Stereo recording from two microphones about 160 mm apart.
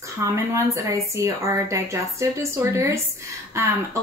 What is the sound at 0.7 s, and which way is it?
A woman's voice, 15° right (ahead or behind).